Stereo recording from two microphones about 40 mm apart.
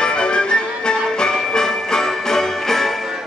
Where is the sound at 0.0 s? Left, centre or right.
Left; by 3.1 s centre.